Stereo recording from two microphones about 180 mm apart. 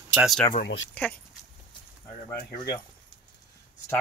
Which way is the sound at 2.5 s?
20° left (ahead or behind).